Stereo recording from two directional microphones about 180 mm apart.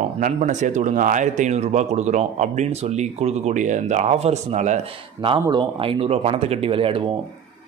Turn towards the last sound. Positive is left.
turn(degrees=-30)  # may be behind; listen again after turning